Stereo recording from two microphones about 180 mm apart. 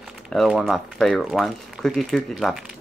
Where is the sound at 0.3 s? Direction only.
Centre (ahead or behind).